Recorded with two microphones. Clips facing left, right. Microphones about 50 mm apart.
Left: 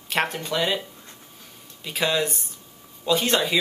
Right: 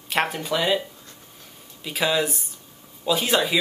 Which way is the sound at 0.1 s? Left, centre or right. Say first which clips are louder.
Right 1 dB; centre.